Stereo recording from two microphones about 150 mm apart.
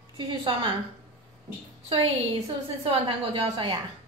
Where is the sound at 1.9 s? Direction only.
35° right (ahead or behind).